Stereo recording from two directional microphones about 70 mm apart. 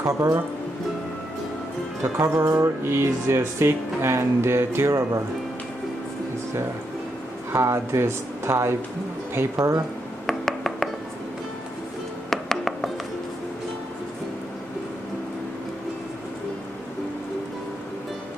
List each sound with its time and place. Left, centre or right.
0.0 s music: right
2.1 s music: right
2.8 s speech: right
7.5 s speech: right
9.6 s speech: right
10.2 s a sound: centre
12.3 s music: centre